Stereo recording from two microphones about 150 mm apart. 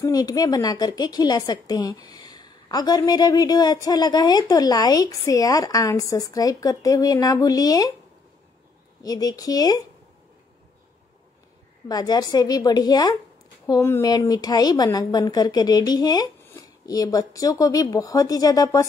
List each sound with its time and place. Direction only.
0.0 s a woman's voice: 25° left (ahead or behind)
9.0 s a woman's voice: 25° left (ahead or behind)
11.9 s a woman's voice: 25° left (ahead or behind)